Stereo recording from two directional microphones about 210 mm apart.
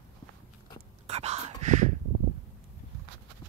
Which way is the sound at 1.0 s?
30° right (ahead or behind).